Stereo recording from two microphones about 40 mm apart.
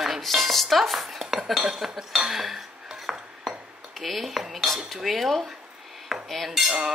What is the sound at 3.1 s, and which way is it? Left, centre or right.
Cutlery, centre.